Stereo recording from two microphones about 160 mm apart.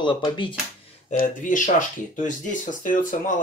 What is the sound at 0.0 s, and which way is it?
Speech, 30° left (ahead or behind).